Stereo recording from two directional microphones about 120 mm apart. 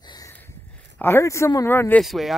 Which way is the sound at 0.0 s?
35° left (ahead or behind).